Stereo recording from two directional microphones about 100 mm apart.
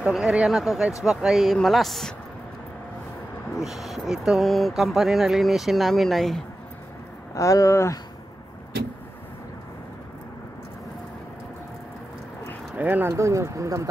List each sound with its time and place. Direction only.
0.0 s speech: 10° right (ahead or behind)
3.5 s speech: centre (ahead or behind)
7.3 s speech: 30° left (ahead or behind)
12.7 s speech: 15° right (ahead or behind)
13.1 s speech: 30° right (ahead or behind)